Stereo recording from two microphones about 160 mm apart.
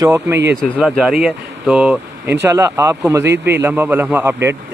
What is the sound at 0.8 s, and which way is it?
Speech, 5° right (ahead or behind).